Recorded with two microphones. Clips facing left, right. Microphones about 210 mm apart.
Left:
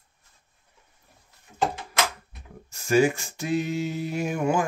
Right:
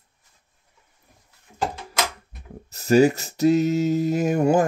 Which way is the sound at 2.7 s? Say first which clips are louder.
Right 4 dB; 35° right (ahead or behind).